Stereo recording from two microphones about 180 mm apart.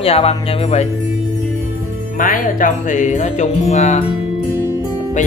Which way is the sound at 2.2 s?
50° left (ahead or behind).